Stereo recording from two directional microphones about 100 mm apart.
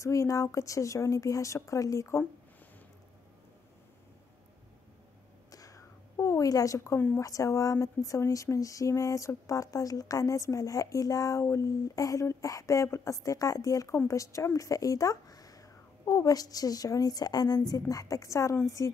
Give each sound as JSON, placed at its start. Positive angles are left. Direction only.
{"t": 0.0, "sound": "speech", "side_deg": 30}
{"t": 5.5, "sound": "a sound", "side_deg": 35}
{"t": 7.2, "sound": "speech", "side_deg": 30}